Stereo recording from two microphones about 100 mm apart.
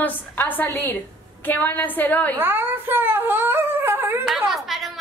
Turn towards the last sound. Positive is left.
turn(degrees=0)  # may be behind; listen again after turning